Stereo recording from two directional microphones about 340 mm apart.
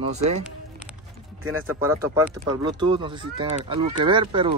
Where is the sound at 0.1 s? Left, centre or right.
Centre.